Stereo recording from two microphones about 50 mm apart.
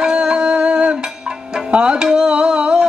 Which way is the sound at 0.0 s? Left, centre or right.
Centre.